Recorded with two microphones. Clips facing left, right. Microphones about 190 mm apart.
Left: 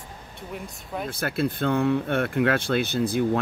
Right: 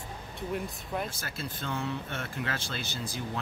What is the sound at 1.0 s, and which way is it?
Speech, 60° left (ahead or behind).